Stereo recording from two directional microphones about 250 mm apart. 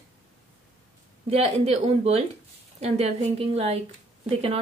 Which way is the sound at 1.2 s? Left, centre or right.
Right.